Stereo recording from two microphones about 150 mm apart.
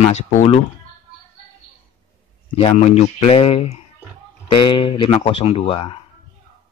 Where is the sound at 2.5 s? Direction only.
40° left (ahead or behind).